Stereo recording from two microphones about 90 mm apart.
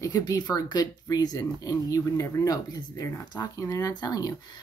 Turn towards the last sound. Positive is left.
turn(degrees=50)  # may be behind; listen again after turning